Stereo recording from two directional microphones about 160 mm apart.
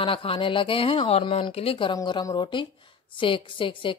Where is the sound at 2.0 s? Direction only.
25° left (ahead or behind).